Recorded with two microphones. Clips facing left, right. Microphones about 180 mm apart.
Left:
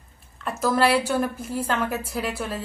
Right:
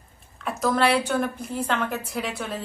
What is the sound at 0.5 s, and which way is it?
A woman's voice, 5° left (ahead or behind).